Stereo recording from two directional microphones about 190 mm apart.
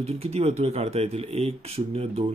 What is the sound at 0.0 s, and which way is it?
Speech, 30° right (ahead or behind).